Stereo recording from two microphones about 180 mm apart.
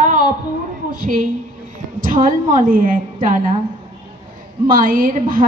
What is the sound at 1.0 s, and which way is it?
A woman's voice, 50° right (ahead or behind).